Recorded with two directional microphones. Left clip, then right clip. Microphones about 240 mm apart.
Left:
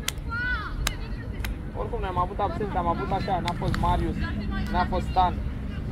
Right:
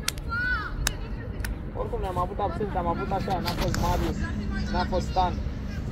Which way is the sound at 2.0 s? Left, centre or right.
Centre.